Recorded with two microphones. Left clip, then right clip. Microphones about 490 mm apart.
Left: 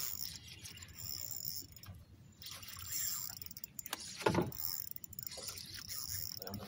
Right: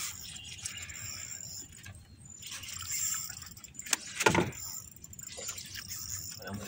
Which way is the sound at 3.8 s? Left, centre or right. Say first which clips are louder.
Right 8 dB; centre.